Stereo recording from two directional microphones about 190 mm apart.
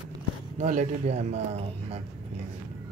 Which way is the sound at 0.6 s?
40° right (ahead or behind).